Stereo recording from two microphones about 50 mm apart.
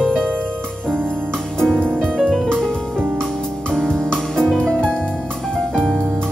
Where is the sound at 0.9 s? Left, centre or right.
Right.